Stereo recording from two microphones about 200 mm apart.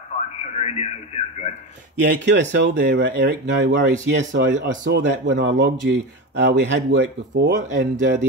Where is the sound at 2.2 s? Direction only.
60° right (ahead or behind).